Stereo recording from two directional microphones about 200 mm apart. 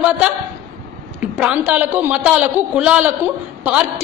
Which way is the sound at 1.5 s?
10° right (ahead or behind).